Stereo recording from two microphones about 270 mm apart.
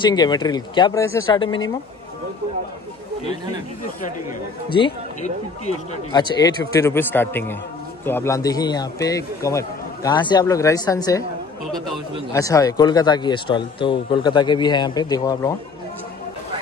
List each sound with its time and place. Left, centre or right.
0.0 s a man's voice: centre
4.6 s a man's voice: centre
11.6 s a man's voice: centre
12.3 s a man's voice: centre